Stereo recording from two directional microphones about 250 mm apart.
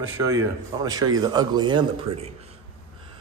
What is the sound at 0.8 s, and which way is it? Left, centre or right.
Speech, centre.